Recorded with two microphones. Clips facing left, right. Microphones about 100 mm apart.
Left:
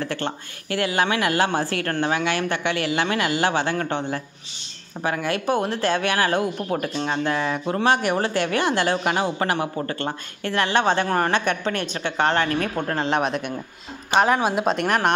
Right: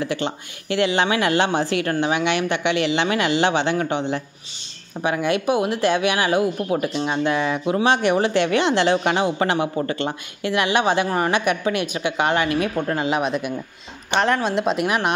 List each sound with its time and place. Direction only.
0.0 s speech: 15° right (ahead or behind)